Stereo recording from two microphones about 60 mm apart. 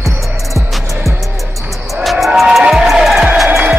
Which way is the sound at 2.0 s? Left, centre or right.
Centre.